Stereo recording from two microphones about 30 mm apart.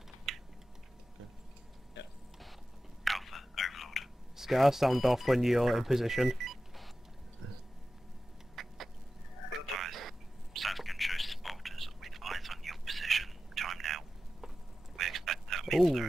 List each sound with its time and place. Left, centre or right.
0.3 s typing: centre
3.0 s whispering: centre
4.6 s speech: centre
8.6 s chicken: centre
9.8 s a sound: centre
15.0 s quack: centre